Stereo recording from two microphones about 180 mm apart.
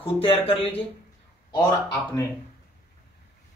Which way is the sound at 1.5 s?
20° left (ahead or behind).